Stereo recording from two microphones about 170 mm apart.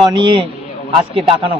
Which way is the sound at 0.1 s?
30° right (ahead or behind).